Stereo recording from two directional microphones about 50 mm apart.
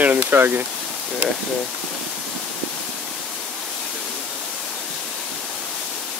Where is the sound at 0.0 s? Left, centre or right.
Right.